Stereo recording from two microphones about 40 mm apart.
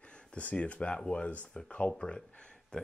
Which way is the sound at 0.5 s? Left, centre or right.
Left.